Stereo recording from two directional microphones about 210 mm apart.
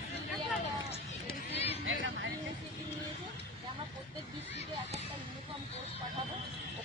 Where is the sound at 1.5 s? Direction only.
30° left (ahead or behind).